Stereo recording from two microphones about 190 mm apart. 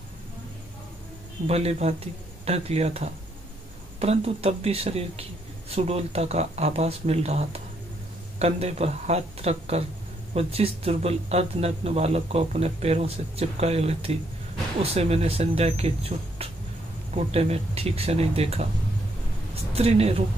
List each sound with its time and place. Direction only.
1.5 s speech: 35° right (ahead or behind)
19.7 s speech: 35° right (ahead or behind)